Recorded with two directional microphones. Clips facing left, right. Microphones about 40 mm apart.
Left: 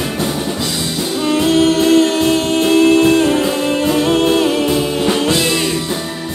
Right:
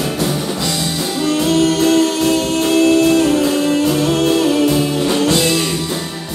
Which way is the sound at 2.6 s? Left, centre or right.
Left.